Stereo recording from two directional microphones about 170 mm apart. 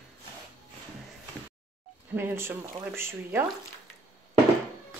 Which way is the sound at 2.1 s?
15° right (ahead or behind).